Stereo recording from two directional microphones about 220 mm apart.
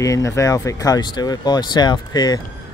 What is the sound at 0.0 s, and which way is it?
Speech, 15° left (ahead or behind).